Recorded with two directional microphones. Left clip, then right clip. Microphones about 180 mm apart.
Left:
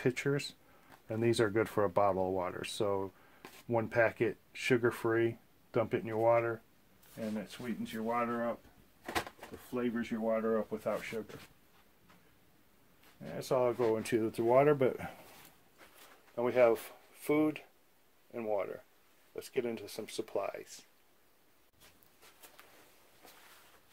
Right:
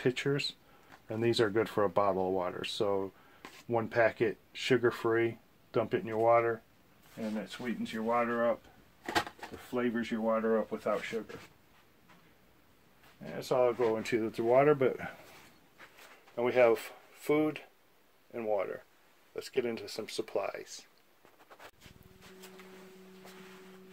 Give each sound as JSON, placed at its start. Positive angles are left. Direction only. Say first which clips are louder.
{"t": 0.0, "sound": "speech", "louder": "right 2 dB", "side_deg": 25}
{"t": 7.2, "sound": "speech", "louder": "right 1 dB", "side_deg": 40}
{"t": 8.0, "sound": "speech", "louder": "right 4 dB", "side_deg": 5}
{"t": 9.7, "sound": "speech", "louder": "right 3 dB", "side_deg": 0}
{"t": 10.8, "sound": "speech", "louder": "right 3 dB", "side_deg": 45}
{"t": 13.4, "sound": "speech", "louder": "right 2 dB", "side_deg": 50}
{"t": 16.3, "sound": "speech", "louder": "right 2 dB", "side_deg": 10}